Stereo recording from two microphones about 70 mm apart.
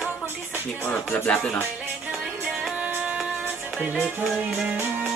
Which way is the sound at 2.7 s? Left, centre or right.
Centre.